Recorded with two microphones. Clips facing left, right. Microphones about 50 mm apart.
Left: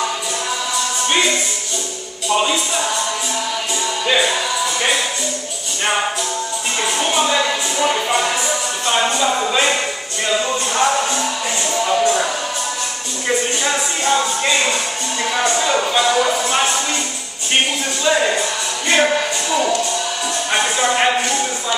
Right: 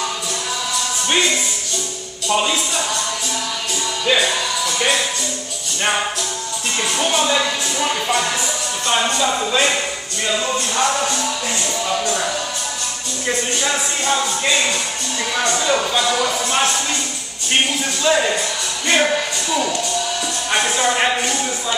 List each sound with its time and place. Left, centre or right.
2.2 s speech: centre
4.0 s music: centre
6.8 s music: centre
8.8 s speech: centre
10.2 s music: centre
10.9 s music: centre
11.7 s a sound: centre
13.3 s speech: centre
18.0 s speech: centre